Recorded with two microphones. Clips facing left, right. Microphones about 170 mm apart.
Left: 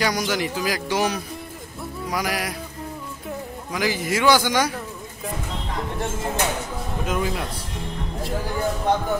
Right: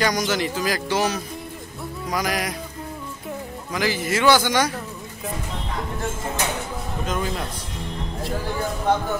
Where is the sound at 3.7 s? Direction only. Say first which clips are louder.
Even; 15° left (ahead or behind).